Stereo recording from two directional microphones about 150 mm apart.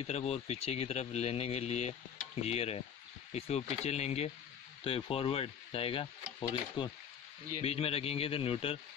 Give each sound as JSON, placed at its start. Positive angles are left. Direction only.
{"t": 0.0, "sound": "speech", "side_deg": 45}